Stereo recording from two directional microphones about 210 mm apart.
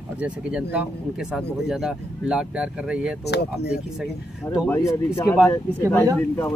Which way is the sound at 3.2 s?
50° left (ahead or behind).